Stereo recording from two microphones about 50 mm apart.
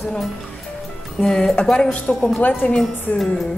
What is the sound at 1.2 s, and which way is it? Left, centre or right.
Music, centre.